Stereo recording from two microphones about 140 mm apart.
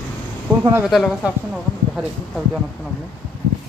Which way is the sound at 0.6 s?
15° right (ahead or behind).